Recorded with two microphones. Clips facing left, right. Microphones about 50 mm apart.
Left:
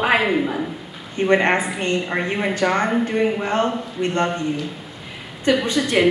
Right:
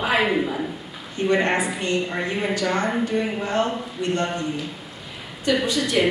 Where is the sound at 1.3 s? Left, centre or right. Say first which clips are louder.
Left 4 dB; left.